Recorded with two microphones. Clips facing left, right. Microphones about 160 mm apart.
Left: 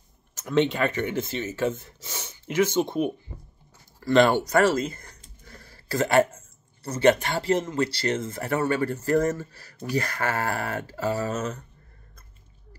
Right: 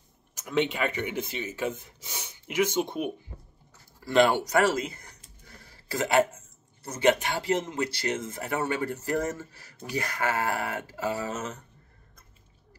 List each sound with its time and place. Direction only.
0.3 s speech: 10° right (ahead or behind)
4.0 s a sound: 10° right (ahead or behind)
6.8 s speech: 15° right (ahead or behind)